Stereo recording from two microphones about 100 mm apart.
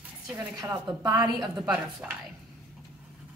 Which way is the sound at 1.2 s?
10° right (ahead or behind).